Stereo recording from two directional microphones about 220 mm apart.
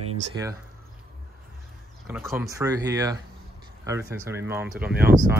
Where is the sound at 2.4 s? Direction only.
15° right (ahead or behind).